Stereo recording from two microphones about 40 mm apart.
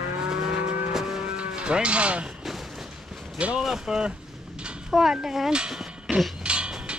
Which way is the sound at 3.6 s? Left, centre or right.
Centre.